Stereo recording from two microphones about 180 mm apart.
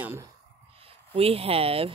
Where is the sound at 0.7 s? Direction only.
30° right (ahead or behind).